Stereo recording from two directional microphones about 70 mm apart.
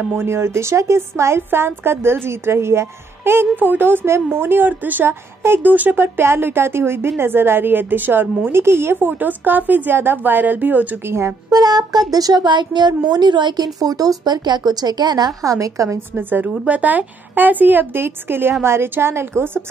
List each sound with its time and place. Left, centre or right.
0.2 s a woman's voice: right
11.1 s a woman's voice: right
11.5 s music: right
12.1 s a woman's voice: right
15.4 s a woman's voice: right
16.2 s a woman's voice: right